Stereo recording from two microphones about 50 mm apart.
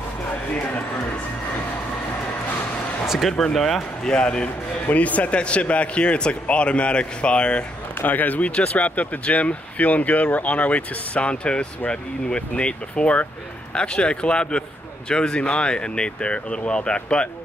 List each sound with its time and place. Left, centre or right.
3.5 s speech: centre
4.1 s speech: left
8.0 s speech: left
8.5 s speech: left